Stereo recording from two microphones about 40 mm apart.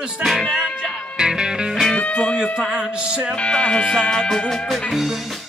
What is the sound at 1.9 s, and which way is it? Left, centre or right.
Speech, left.